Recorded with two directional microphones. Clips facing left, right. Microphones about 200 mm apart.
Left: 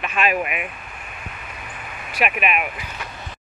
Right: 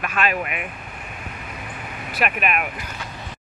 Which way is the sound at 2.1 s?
5° left (ahead or behind).